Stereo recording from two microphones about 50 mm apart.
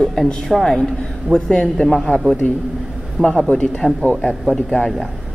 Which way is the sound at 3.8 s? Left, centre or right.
Centre.